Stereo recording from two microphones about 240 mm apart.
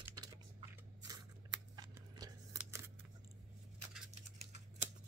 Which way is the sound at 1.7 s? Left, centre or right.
Centre.